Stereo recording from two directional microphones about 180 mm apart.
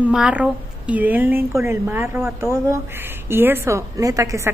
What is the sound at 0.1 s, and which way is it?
A woman's voice, 5° right (ahead or behind).